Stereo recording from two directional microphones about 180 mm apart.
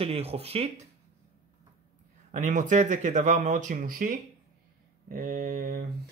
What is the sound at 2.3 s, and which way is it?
Speech, 45° right (ahead or behind).